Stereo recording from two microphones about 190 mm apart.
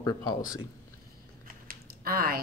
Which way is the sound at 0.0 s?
20° left (ahead or behind).